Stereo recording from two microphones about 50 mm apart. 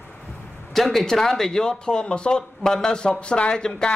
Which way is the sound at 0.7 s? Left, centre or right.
Centre.